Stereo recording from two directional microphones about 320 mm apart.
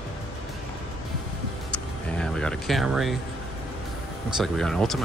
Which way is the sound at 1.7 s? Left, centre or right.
Centre.